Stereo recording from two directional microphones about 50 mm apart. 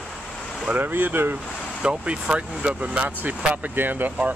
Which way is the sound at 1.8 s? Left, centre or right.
Right.